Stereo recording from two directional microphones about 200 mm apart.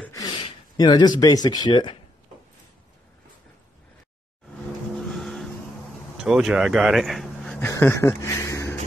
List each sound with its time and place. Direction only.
0.1 s speech: 20° left (ahead or behind)
5.0 s vehicle: centre (ahead or behind)
6.1 s speech: centre (ahead or behind)
7.7 s speech: 15° left (ahead or behind)